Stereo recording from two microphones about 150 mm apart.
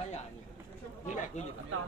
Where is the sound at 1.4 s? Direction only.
50° left (ahead or behind).